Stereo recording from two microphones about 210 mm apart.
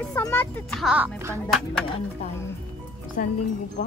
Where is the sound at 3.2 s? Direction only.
40° left (ahead or behind).